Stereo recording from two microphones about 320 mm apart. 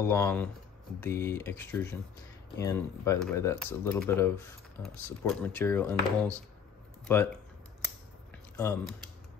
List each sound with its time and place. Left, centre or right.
0.0 s speech: centre
8.5 s speech: centre